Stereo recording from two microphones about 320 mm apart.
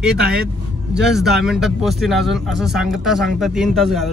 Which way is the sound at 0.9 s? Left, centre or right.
Centre.